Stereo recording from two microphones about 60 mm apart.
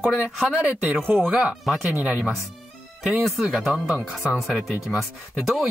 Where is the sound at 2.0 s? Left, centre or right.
Right.